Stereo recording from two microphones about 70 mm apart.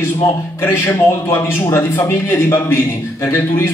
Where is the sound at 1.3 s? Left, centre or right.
Left.